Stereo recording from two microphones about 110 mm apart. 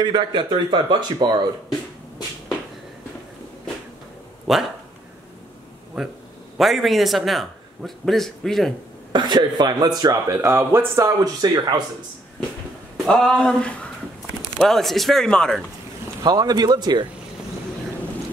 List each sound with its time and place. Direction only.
0.0 s speech: 45° right (ahead or behind)
4.5 s a man's voice: 5° right (ahead or behind)
6.0 s a man's voice: 5° right (ahead or behind)
9.1 s a man's voice: 45° right (ahead or behind)
10.4 s speech: 20° right (ahead or behind)
11.1 s a man's voice: 35° right (ahead or behind)
12.9 s a man's voice: 5° left (ahead or behind)
16.3 s a man's voice: 35° right (ahead or behind)